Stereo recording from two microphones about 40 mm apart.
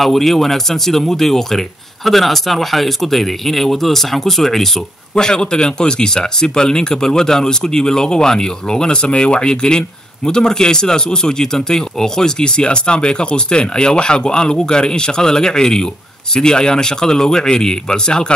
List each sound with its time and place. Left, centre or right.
0.0 s speech: centre
5.1 s speech: centre